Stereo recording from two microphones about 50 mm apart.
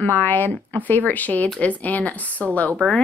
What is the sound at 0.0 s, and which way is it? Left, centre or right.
Speech, left.